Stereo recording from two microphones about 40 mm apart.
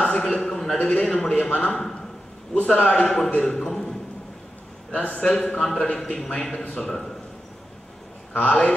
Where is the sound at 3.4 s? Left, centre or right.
Centre.